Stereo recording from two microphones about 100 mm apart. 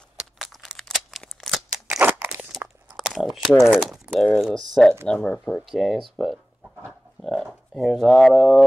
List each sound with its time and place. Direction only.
0.2 s crumpling: centre (ahead or behind)
1.2 s shuffling cards: 5° left (ahead or behind)
1.9 s crunch: 15° right (ahead or behind)
3.0 s a sound: 5° right (ahead or behind)
3.4 s speech: 5° right (ahead or behind)